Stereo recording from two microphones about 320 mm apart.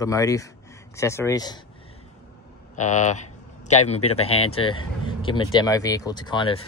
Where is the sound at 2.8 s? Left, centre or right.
Left.